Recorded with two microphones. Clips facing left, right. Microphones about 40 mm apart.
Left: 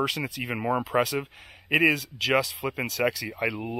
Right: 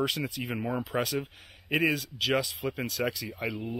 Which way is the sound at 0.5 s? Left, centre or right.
Left.